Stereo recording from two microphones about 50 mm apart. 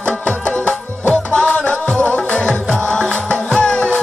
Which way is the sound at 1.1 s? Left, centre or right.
Centre.